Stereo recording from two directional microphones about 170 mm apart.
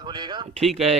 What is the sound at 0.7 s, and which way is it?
Speech, 40° right (ahead or behind).